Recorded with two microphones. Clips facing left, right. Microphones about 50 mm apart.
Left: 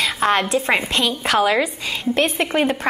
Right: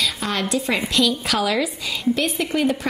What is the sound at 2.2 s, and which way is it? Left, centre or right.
Speech, left.